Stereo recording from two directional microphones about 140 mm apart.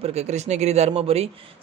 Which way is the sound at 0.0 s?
50° right (ahead or behind).